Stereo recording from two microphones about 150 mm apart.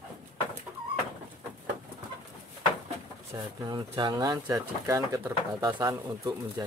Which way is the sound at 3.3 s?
30° right (ahead or behind).